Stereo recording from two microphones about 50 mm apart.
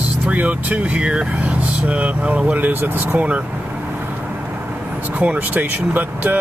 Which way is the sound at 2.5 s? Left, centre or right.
Right.